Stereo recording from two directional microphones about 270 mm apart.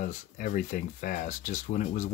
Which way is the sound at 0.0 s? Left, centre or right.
Left.